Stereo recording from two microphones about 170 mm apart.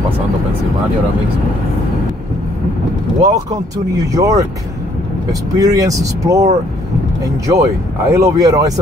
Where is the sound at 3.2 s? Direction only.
20° right (ahead or behind).